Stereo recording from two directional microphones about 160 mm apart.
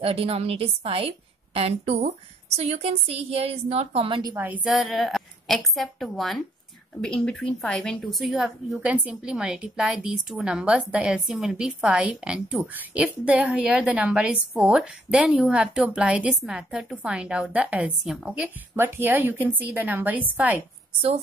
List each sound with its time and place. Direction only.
0.0 s a woman's voice: 35° right (ahead or behind)
4.4 s a woman's voice: 5° right (ahead or behind)